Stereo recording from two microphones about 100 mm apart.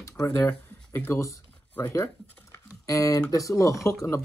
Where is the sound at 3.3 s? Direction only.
30° left (ahead or behind).